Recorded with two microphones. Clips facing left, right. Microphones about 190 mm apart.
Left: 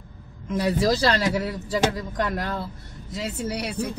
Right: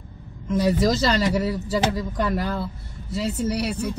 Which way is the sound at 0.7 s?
Centre (ahead or behind).